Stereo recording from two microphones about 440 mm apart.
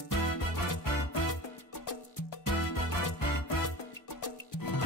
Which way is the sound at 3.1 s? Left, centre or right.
Left.